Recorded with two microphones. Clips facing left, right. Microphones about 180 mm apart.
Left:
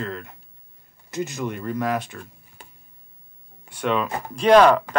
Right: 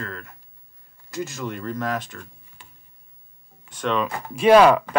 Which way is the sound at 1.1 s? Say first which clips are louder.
Left 2 dB; 20° left (ahead or behind).